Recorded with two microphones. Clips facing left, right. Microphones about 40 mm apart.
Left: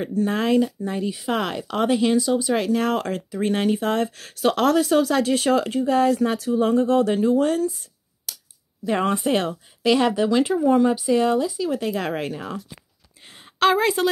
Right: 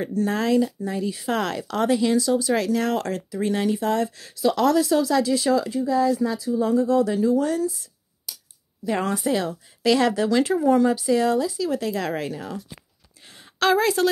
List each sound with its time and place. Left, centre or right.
0.2 s speech: left
8.8 s speech: left
9.8 s speech: centre
10.8 s speech: centre
13.2 s a sound: left